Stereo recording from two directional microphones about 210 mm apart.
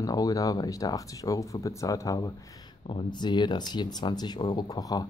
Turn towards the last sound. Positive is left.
turn(degrees=20)  # may be behind; listen again after turning